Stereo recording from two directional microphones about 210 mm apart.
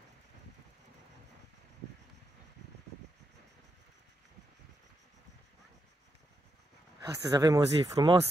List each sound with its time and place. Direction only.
7.0 s speech: 15° right (ahead or behind)